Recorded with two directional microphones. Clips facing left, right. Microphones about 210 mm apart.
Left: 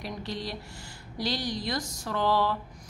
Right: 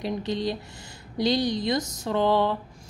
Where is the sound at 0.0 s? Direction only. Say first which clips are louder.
Right 8 dB; 20° right (ahead or behind).